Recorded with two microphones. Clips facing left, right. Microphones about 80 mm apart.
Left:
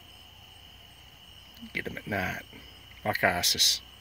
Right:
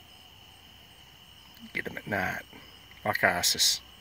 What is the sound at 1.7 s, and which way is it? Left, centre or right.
Speech, right.